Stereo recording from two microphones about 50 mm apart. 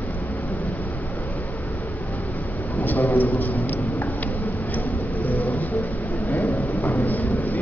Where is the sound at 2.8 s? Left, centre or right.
Left.